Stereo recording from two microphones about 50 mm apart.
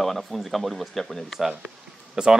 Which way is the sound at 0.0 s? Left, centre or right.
Centre.